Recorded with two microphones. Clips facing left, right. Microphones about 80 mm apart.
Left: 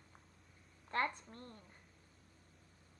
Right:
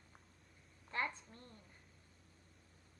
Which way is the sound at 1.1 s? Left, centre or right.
Centre.